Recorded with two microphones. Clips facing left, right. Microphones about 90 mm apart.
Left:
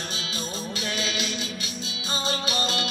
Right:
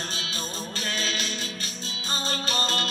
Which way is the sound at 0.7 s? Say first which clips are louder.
Left 1 dB; 45° right (ahead or behind).